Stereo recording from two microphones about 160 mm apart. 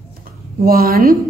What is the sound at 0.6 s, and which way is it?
Speech, 65° right (ahead or behind).